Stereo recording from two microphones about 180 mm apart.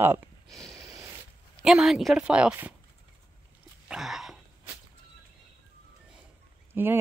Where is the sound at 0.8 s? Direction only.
15° right (ahead or behind).